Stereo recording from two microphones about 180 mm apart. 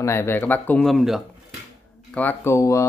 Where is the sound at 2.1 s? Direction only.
10° left (ahead or behind).